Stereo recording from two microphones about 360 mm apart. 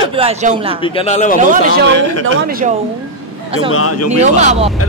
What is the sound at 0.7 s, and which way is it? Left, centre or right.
Speech, centre.